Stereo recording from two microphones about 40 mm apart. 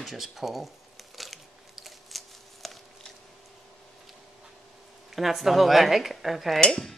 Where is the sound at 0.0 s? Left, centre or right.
Centre.